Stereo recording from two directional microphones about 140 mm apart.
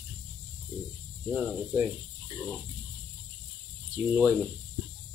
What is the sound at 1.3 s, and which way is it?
Speech, centre (ahead or behind).